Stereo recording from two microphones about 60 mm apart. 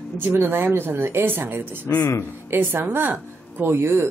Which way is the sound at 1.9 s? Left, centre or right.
Left.